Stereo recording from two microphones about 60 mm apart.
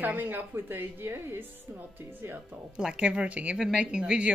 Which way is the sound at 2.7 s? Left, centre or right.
Centre.